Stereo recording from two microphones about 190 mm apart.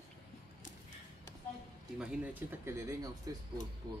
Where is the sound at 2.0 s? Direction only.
10° right (ahead or behind).